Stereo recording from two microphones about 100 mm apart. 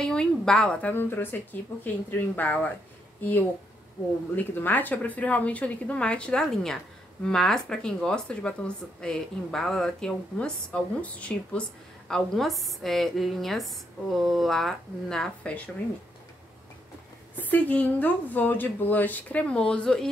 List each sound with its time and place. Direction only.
0.0 s a woman's voice: 10° left (ahead or behind)
12.1 s a woman's voice: centre (ahead or behind)
17.4 s speech: 15° left (ahead or behind)